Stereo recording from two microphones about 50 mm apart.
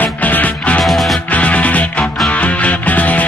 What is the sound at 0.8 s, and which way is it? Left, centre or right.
Music, centre.